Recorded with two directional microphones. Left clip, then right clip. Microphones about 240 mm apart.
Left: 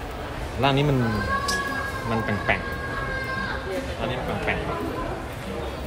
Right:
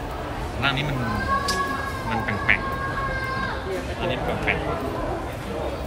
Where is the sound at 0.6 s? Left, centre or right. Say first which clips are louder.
Left 2 dB; centre.